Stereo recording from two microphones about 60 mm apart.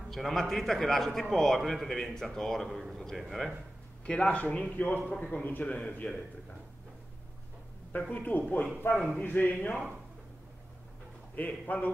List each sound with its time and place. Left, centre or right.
0.1 s a man's voice: centre
4.0 s speech: centre
5.1 s a man's voice: centre
5.4 s a man's voice: left
6.0 s a man's voice: centre
8.1 s a man's voice: left
11.3 s speech: left